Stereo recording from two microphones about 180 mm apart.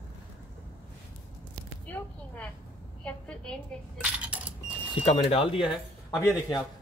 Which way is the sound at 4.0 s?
5° right (ahead or behind).